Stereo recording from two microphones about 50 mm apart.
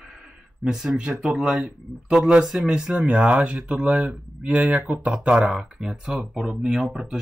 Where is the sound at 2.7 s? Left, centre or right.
Centre.